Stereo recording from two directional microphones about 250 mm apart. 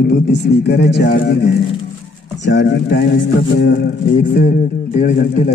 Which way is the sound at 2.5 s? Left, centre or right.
Left.